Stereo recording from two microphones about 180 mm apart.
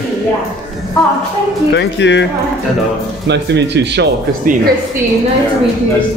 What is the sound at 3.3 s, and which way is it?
Speech, 75° right (ahead or behind).